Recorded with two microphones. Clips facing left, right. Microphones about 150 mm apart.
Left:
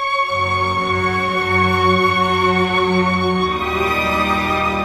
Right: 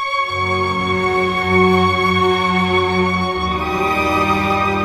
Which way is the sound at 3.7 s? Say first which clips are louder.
Right 2 dB; 20° right (ahead or behind).